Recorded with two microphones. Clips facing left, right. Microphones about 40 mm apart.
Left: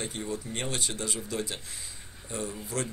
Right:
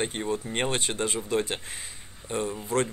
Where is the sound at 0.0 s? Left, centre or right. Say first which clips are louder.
Right 6 dB; right.